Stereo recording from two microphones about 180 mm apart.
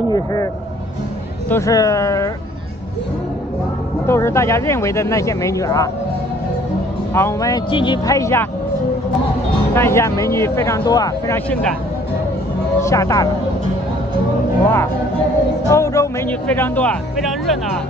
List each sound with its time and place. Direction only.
0.1 s a man's voice: 20° left (ahead or behind)
1.5 s speech: 20° left (ahead or behind)
4.1 s speech: 15° left (ahead or behind)
7.2 s speech: 15° left (ahead or behind)
9.8 s speech: 15° left (ahead or behind)
12.8 s speech: 15° left (ahead or behind)
14.6 s speech: 10° left (ahead or behind)